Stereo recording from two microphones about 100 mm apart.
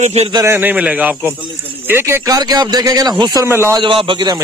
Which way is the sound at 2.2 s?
40° right (ahead or behind).